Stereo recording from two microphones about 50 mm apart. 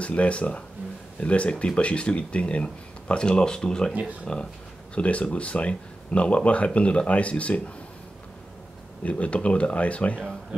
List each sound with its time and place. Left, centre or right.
0.0 s speech: left
3.9 s speech: right
4.9 s speech: left
9.0 s speech: left